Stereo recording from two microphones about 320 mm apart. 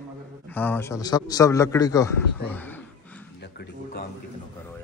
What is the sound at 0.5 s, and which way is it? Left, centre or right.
A man's voice, centre.